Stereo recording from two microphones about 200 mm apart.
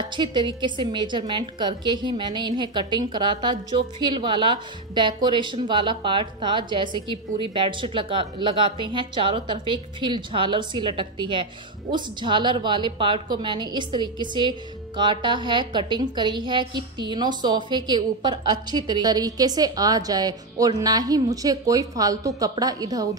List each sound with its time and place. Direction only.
0.1 s a woman's voice: 25° right (ahead or behind)